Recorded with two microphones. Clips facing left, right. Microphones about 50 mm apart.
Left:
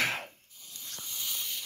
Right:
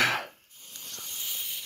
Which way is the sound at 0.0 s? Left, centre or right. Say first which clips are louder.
Right 5 dB; right.